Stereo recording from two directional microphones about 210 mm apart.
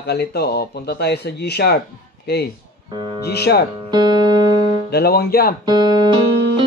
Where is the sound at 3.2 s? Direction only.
50° left (ahead or behind).